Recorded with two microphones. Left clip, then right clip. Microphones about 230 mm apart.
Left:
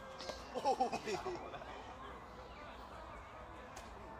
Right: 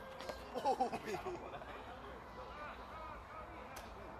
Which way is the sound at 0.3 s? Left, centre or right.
Centre.